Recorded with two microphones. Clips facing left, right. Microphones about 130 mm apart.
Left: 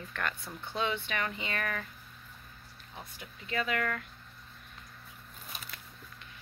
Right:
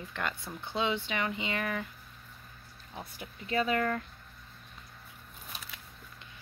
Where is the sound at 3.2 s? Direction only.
30° right (ahead or behind).